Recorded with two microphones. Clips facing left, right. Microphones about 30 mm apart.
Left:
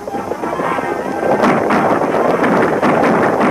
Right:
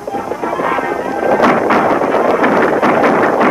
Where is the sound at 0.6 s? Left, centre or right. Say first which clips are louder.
Right 2 dB; centre.